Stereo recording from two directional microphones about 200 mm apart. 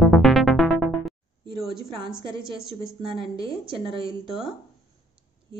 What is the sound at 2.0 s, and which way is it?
A woman's voice, 20° right (ahead or behind).